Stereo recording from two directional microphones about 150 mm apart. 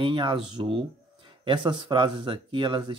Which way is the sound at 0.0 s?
30° right (ahead or behind).